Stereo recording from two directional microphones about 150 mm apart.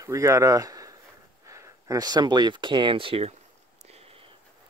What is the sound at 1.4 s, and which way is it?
Speech, 20° right (ahead or behind).